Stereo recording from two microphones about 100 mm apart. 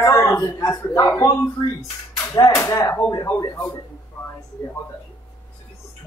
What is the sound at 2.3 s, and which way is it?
A man's voice, 30° left (ahead or behind).